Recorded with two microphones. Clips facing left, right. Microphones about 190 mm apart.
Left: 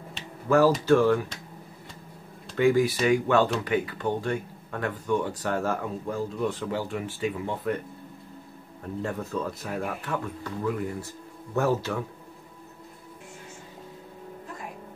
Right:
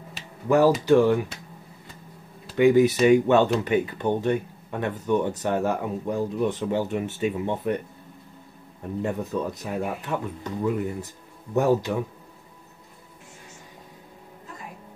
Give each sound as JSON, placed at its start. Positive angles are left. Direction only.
{"t": 0.5, "sound": "speech", "side_deg": -15}
{"t": 2.5, "sound": "speech", "side_deg": -20}
{"t": 9.0, "sound": "speech", "side_deg": -20}